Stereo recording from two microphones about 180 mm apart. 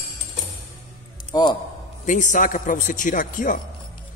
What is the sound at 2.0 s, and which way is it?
A man's voice, 45° left (ahead or behind).